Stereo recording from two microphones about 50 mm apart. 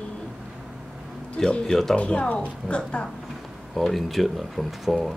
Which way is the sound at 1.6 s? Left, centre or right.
Centre.